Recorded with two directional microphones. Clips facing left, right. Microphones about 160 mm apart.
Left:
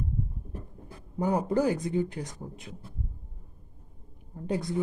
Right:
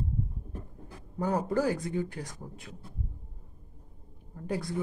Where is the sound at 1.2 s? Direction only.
15° left (ahead or behind).